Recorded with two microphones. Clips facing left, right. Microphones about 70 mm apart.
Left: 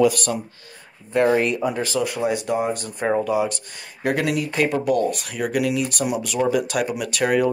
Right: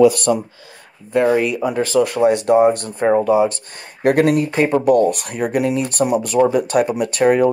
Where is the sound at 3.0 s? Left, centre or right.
Centre.